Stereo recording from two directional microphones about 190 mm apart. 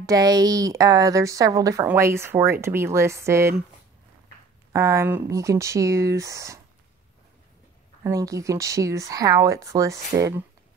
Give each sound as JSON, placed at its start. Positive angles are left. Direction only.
{"t": 0.0, "sound": "speech", "side_deg": -20}
{"t": 4.7, "sound": "speech", "side_deg": -15}
{"t": 8.0, "sound": "speech", "side_deg": -15}